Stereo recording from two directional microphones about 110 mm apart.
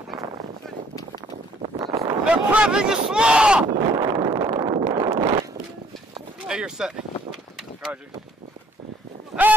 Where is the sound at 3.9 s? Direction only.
45° right (ahead or behind).